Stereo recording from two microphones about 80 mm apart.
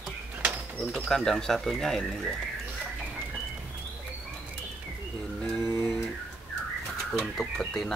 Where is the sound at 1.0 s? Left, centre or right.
Centre.